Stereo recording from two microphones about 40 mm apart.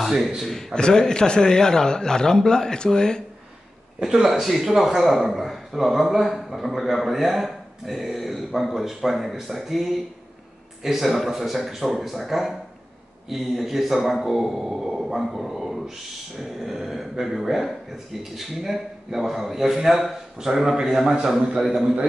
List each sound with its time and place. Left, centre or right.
0.0 s a man's voice: centre
0.7 s speech: centre
4.0 s a man's voice: centre